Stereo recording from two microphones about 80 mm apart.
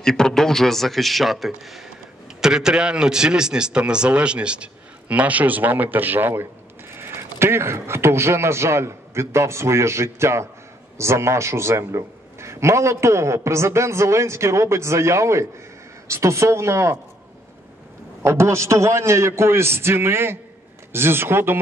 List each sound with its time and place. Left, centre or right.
0.0 s a man's voice: centre; by 17.0 s right
18.2 s a man's voice: right